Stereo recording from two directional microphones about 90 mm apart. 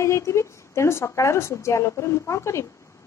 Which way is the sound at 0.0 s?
30° left (ahead or behind).